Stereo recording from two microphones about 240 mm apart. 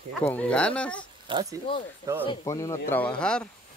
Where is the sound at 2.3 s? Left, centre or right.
Centre.